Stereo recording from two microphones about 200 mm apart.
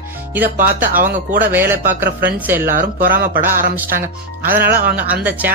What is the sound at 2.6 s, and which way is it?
Speech, 45° right (ahead or behind).